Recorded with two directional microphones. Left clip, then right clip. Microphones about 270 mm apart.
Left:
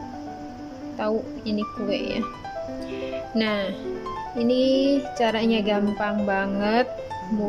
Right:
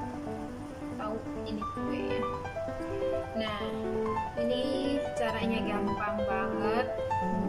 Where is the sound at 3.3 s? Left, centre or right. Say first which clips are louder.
Left 8 dB; left.